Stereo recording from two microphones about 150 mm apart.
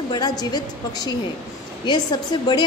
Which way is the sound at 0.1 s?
30° left (ahead or behind).